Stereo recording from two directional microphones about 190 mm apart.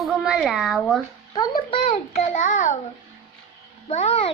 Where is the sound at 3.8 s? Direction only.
30° left (ahead or behind).